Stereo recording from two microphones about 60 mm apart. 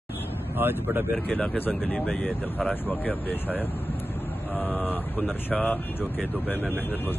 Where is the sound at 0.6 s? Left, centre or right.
Right.